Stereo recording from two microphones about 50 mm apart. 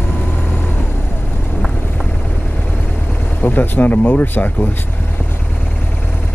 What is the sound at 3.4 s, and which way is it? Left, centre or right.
Speech, left.